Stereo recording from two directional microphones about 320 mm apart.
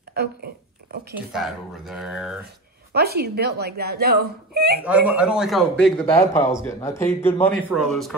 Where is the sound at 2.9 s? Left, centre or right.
Right.